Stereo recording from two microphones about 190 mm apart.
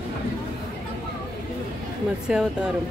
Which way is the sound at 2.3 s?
5° right (ahead or behind).